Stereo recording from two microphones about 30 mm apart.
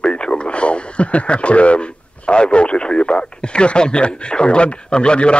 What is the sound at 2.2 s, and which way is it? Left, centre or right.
Speech, left.